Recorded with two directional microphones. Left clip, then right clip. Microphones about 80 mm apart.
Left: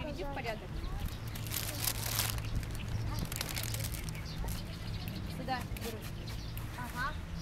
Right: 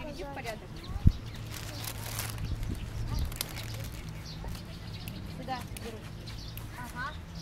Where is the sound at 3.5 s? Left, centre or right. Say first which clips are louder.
Left 2 dB; left.